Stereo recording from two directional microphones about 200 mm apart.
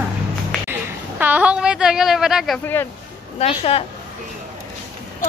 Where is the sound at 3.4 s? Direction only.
30° left (ahead or behind).